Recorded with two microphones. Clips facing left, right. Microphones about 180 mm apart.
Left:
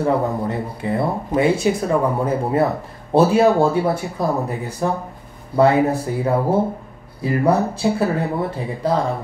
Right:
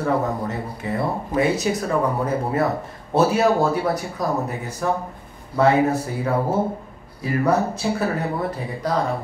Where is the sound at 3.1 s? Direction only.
30° left (ahead or behind).